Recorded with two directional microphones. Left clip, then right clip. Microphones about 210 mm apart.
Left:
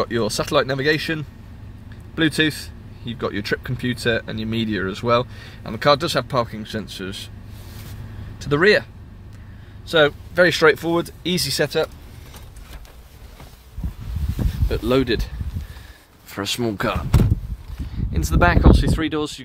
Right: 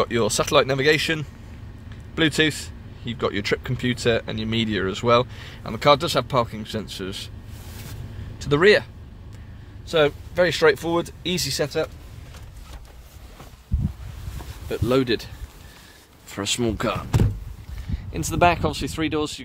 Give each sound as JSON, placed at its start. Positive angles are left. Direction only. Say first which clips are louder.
{"t": 0.0, "sound": "speech", "louder": "right 1 dB", "side_deg": 5}
{"t": 8.4, "sound": "speech", "louder": "even", "side_deg": 0}
{"t": 9.8, "sound": "speech", "louder": "left 3 dB", "side_deg": 5}
{"t": 14.7, "sound": "speech", "louder": "left 2 dB", "side_deg": 10}
{"t": 18.1, "sound": "speech", "louder": "even", "side_deg": -5}